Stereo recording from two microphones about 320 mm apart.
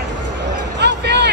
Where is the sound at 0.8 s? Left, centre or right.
Right.